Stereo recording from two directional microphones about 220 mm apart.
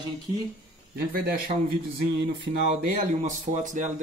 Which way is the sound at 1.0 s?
45° right (ahead or behind).